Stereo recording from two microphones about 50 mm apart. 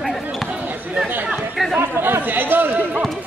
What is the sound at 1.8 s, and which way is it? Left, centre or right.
Chatter, right.